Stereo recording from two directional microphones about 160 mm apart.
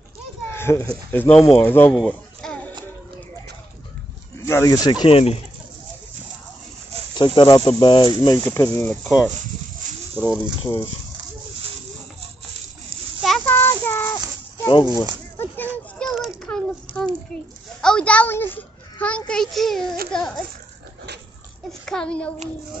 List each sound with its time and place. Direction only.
0.5 s a sound: 15° left (ahead or behind)
1.1 s a child's voice: 10° left (ahead or behind)
2.0 s a sound: 5° left (ahead or behind)
4.5 s speech: 20° left (ahead or behind)
5.0 s speech: 40° left (ahead or behind)
7.2 s speech: 25° left (ahead or behind)
10.2 s speech: 10° right (ahead or behind)
13.5 s music: 15° left (ahead or behind)
14.7 s speech: 30° left (ahead or behind)
15.3 s a sound: 10° left (ahead or behind)
16.0 s a sound: centre (ahead or behind)
17.8 s a child's voice: 5° left (ahead or behind)
21.8 s a child's voice: 5° left (ahead or behind)